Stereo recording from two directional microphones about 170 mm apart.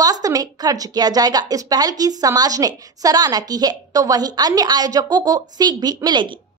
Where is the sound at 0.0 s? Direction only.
20° right (ahead or behind).